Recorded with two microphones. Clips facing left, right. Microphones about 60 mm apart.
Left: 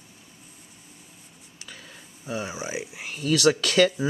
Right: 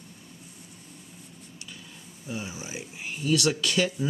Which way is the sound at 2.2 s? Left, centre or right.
Left.